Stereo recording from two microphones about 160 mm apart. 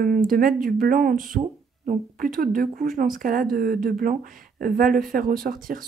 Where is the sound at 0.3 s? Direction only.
60° right (ahead or behind).